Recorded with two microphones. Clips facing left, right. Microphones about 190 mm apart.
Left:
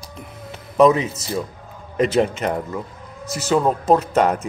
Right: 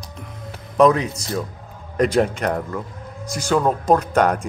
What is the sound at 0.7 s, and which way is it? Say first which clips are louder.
Speech: left 1 dB; 5° left (ahead or behind).